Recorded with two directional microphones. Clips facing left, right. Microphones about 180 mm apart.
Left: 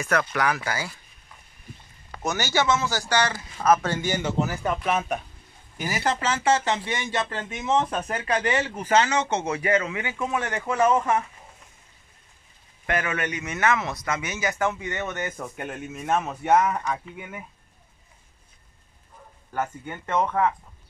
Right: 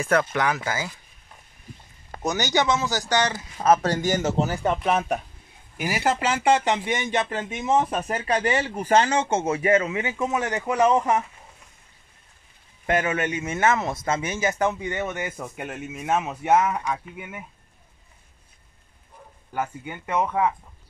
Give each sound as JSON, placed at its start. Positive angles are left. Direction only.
{"t": 0.0, "sound": "speech", "side_deg": -25}
{"t": 2.2, "sound": "speech", "side_deg": -15}
{"t": 3.8, "sound": "speech", "side_deg": -40}
{"t": 4.4, "sound": "speech", "side_deg": -30}
{"t": 5.8, "sound": "speech", "side_deg": -10}
{"t": 9.4, "sound": "speech", "side_deg": -25}
{"t": 12.8, "sound": "speech", "side_deg": -25}
{"t": 19.5, "sound": "speech", "side_deg": -5}